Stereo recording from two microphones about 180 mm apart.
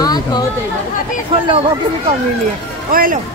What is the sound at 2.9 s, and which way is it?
Speech, 50° right (ahead or behind).